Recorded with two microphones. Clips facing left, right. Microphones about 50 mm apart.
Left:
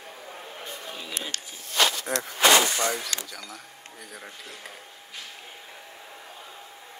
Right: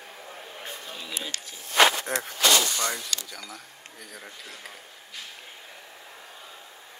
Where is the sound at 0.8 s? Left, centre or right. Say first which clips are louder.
Left 1 dB; centre.